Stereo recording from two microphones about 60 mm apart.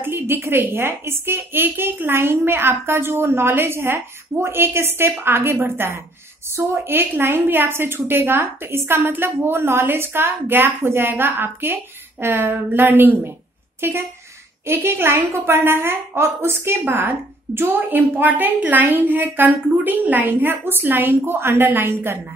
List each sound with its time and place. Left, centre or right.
0.0 s a woman's voice: right